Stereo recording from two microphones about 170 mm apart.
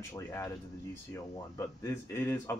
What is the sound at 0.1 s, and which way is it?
Speech, 15° left (ahead or behind).